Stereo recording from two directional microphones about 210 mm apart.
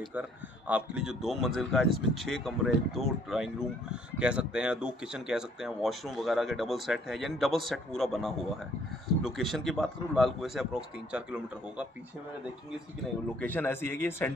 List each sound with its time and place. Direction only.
0.1 s speech: 5° right (ahead or behind)
13.4 s a man's voice: 10° left (ahead or behind)